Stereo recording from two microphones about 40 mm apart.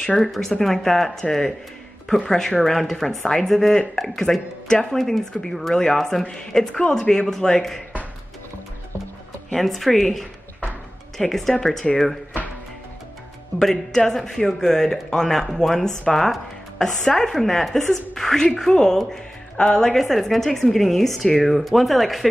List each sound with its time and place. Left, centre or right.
0.0 s speech: centre
9.5 s speech: centre
13.6 s a woman's voice: centre
20.0 s speech: centre